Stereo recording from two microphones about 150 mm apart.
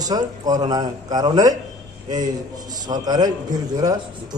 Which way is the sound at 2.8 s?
25° right (ahead or behind).